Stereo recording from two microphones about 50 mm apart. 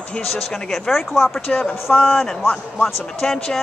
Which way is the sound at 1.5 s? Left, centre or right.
Left.